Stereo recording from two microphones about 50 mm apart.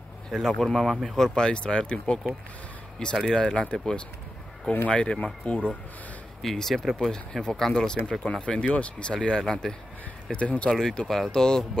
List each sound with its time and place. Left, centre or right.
0.3 s speech: centre
3.2 s speech: centre
4.6 s speech: left
6.4 s speech: centre
10.3 s speech: left
10.7 s speech: centre